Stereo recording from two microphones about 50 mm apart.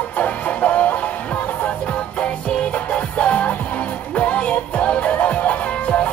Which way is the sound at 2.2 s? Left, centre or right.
Left.